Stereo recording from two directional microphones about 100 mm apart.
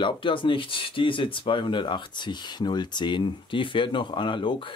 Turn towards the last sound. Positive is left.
turn(degrees=55)  # may be behind; listen again after turning